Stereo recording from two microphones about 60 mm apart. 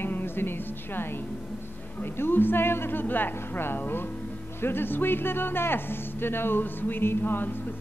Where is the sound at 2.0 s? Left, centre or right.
Left.